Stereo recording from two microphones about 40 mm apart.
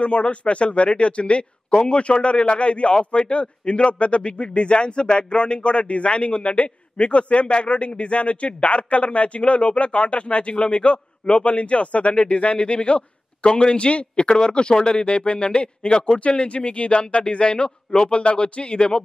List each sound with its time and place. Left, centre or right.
0.0 s a man's voice: left